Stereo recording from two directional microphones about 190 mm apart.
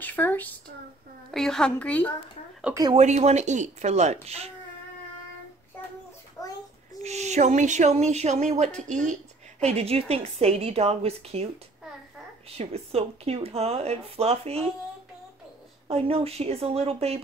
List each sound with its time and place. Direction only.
0.0 s a sound: 10° left (ahead or behind)
1.3 s a woman's voice: centre (ahead or behind)
3.0 s owl: 35° right (ahead or behind)
6.4 s child singing: 20° left (ahead or behind)
7.0 s owl: 35° right (ahead or behind)
12.4 s owl: 35° right (ahead or behind)
15.9 s owl: 30° right (ahead or behind)